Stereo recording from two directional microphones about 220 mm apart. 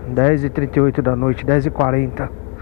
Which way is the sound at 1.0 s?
20° left (ahead or behind).